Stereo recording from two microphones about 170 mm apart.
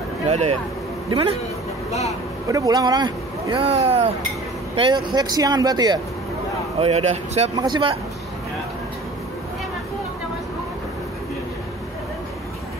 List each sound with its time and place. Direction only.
0.3 s speech: 40° right (ahead or behind)
1.9 s speech: 40° left (ahead or behind)
2.4 s speech: 20° right (ahead or behind)
3.6 s speech: 35° right (ahead or behind)
6.8 s speech: 40° right (ahead or behind)
7.5 s speech: 25° right (ahead or behind)